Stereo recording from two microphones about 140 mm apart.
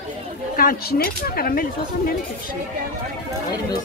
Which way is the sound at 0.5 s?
90° left.